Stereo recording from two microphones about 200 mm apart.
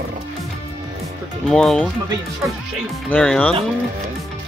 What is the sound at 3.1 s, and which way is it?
Speech, 5° left (ahead or behind).